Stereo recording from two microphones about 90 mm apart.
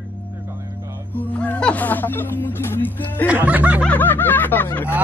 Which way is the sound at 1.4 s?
15° left (ahead or behind).